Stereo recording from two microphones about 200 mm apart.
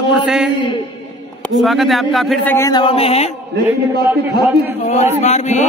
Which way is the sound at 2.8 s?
30° left (ahead or behind).